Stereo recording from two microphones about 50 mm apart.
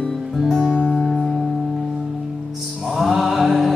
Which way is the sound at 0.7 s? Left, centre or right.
Right.